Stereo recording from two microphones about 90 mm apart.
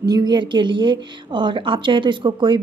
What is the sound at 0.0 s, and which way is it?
A woman's voice, 50° right (ahead or behind).